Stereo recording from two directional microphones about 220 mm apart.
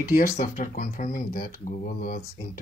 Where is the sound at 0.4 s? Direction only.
35° left (ahead or behind).